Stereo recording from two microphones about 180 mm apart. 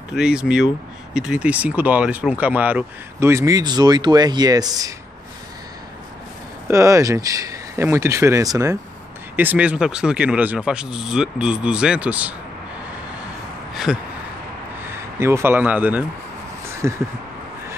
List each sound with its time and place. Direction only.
0.1 s speech: 5° right (ahead or behind); by 4.9 s 20° right (ahead or behind)
6.7 s speech: 15° right (ahead or behind)
13.9 s speech: 5° right (ahead or behind)
15.1 s speech: 15° right (ahead or behind)